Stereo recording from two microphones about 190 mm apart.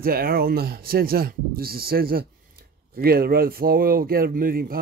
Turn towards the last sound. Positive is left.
turn(degrees=-50)  # may be behind; listen again after turning